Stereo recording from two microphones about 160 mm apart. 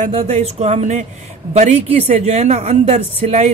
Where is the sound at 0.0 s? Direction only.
40° right (ahead or behind).